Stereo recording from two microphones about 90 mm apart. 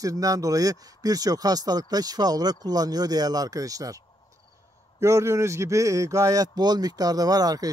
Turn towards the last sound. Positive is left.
turn(degrees=-45)  # may be behind; listen again after turning